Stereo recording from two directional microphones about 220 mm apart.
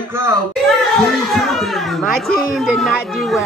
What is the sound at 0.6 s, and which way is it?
Speech, centre (ahead or behind).